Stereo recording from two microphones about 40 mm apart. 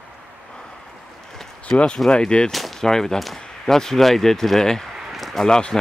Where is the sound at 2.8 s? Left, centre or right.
Centre.